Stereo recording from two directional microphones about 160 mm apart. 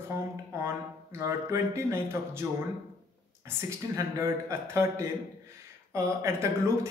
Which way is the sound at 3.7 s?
20° right (ahead or behind).